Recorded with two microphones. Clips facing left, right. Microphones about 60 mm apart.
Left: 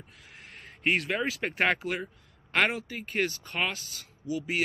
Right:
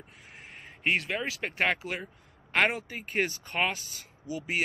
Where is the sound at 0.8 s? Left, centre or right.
Centre.